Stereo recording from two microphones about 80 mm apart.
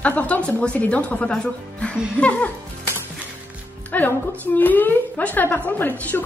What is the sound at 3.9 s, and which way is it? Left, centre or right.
A woman's voice, left.